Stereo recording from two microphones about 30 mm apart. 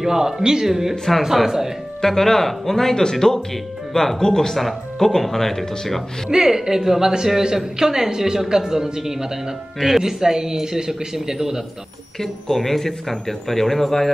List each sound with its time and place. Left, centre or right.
0.0 s a man's voice: centre
0.7 s speech: centre
2.0 s speech: centre
6.3 s a man's voice: centre
12.2 s speech: centre